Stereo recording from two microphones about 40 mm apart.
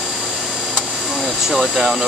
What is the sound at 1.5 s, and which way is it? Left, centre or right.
Speech, centre.